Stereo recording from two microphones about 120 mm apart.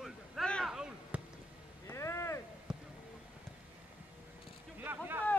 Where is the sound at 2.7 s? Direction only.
5° right (ahead or behind).